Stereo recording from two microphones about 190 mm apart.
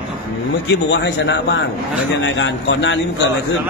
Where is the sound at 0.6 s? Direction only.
65° left (ahead or behind).